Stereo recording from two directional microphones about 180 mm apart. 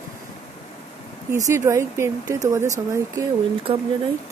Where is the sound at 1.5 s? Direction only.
15° right (ahead or behind).